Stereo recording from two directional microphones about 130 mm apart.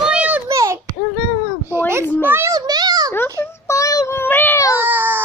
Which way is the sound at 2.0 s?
15° left (ahead or behind).